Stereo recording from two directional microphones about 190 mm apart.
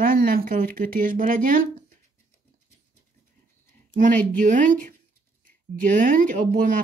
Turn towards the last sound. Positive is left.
turn(degrees=-45)  # may be behind; listen again after turning